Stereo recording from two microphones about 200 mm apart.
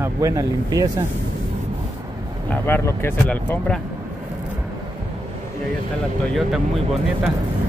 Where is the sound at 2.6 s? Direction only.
10° left (ahead or behind).